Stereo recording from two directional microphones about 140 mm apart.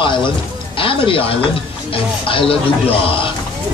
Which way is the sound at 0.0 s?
35° left (ahead or behind).